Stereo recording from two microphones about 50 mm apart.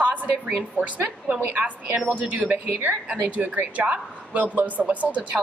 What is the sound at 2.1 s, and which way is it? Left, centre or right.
A woman's voice, right.